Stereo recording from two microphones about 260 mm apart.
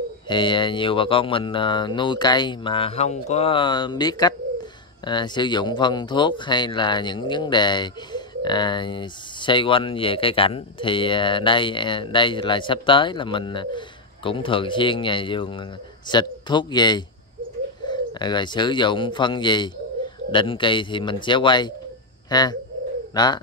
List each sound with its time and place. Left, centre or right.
0.3 s speech: centre